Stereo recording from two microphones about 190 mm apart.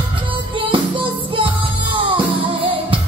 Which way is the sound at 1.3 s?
25° right (ahead or behind).